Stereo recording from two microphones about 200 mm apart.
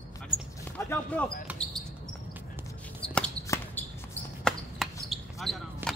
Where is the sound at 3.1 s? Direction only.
5° left (ahead or behind).